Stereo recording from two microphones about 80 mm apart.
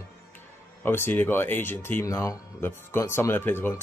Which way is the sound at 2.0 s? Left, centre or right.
Left.